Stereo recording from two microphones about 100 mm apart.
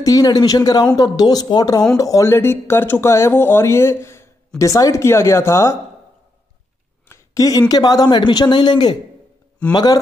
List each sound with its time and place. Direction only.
0.0 s speech: 40° left (ahead or behind)
7.3 s speech: 35° left (ahead or behind)